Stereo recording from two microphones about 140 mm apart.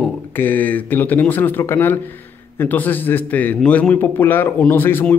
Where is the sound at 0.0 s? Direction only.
10° left (ahead or behind).